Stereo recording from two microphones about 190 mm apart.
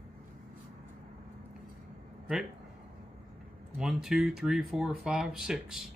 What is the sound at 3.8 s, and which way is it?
Speech, centre (ahead or behind).